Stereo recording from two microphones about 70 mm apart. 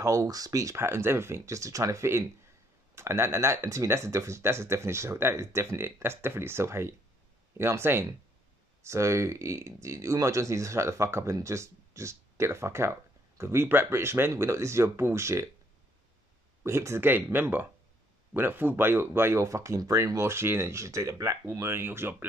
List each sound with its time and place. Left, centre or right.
0.0 s speech: right
0.7 s speech: right
16.6 s speech: right
17.1 s speech: right
19.4 s speech: right
19.8 s speech: right
21.5 s speech: right